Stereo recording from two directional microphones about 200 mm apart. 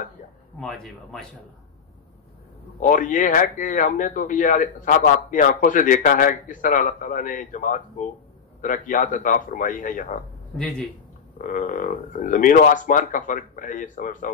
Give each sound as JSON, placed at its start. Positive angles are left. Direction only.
{"t": 0.6, "sound": "speech", "side_deg": 0}
{"t": 2.8, "sound": "speech", "side_deg": 40}
{"t": 11.3, "sound": "speech", "side_deg": 40}